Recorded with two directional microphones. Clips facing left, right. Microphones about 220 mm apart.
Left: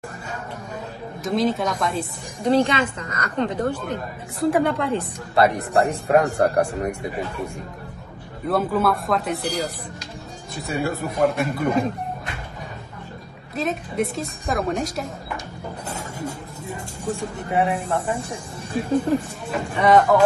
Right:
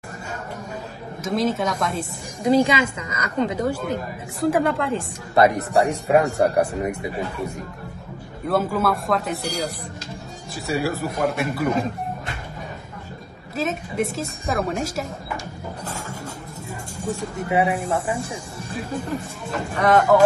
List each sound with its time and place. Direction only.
1.2 s a woman's voice: centre (ahead or behind)
5.3 s speech: 20° right (ahead or behind)
5.7 s a woman's voice: centre (ahead or behind)
8.5 s a woman's voice: centre (ahead or behind)
13.6 s a woman's voice: centre (ahead or behind)
17.5 s a woman's voice: centre (ahead or behind)
19.7 s a woman's voice: centre (ahead or behind)